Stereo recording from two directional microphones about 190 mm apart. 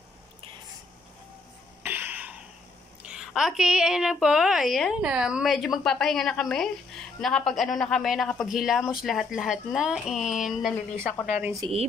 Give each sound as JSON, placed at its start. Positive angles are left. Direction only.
{"t": 1.8, "sound": "a sound", "side_deg": -10}
{"t": 3.1, "sound": "a woman's voice", "side_deg": -5}
{"t": 11.6, "sound": "a woman's voice", "side_deg": -25}